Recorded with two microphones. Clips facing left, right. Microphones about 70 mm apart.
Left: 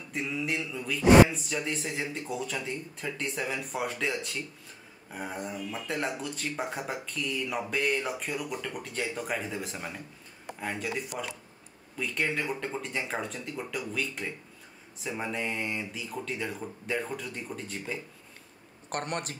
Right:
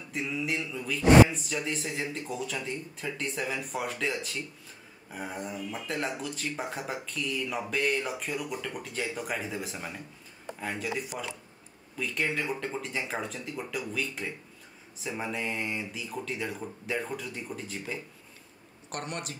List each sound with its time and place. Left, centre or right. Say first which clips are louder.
0.1 s speech: even; centre
18.9 s a man's voice: left 3 dB; left